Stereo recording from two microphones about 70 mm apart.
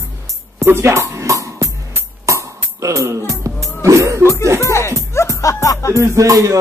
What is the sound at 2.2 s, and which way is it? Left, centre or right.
Music, right.